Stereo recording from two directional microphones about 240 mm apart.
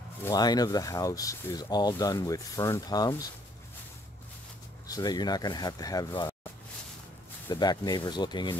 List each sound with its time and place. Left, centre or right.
0.2 s speech: centre
4.8 s speech: centre
7.4 s speech: centre